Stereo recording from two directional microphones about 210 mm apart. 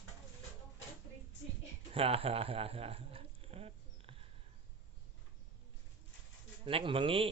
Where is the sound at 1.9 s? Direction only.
25° right (ahead or behind).